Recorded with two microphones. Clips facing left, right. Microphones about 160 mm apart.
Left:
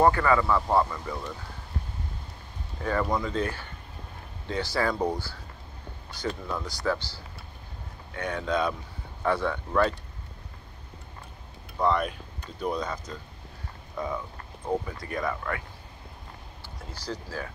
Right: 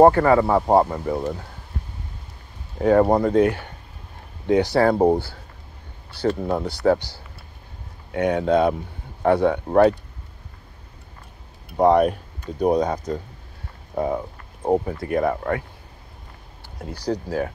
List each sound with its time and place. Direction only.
0.1 s speech: 40° right (ahead or behind); by 1.3 s 55° right (ahead or behind)
2.8 s speech: 60° right (ahead or behind)
8.2 s speech: 65° right (ahead or behind)
11.7 s speech: 65° right (ahead or behind)
13.9 s clip-clop: 50° right (ahead or behind)
14.7 s speech: 60° right (ahead or behind)
17.1 s speech: 60° right (ahead or behind)